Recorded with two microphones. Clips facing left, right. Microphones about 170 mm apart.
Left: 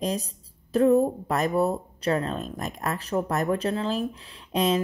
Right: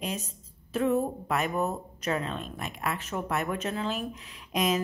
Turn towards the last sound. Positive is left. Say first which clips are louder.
# left 4 dB
turn(degrees=30)  # may be behind; listen again after turning